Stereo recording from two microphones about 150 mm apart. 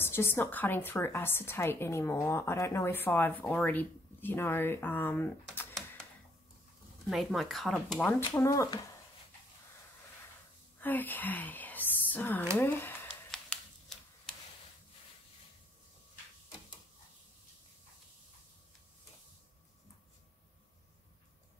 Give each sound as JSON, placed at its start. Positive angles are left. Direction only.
{"t": 0.0, "sound": "a woman's voice", "side_deg": 15}
{"t": 7.1, "sound": "speech", "side_deg": 0}
{"t": 8.4, "sound": "speech", "side_deg": 20}
{"t": 10.8, "sound": "speech", "side_deg": 10}
{"t": 13.3, "sound": "a sound", "side_deg": 5}